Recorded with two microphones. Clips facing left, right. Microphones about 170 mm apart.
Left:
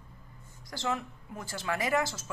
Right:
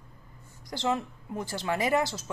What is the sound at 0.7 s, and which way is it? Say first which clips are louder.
Speech: right 4 dB; 20° right (ahead or behind).